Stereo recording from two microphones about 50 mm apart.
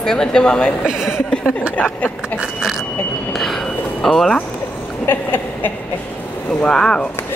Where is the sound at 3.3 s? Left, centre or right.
Centre.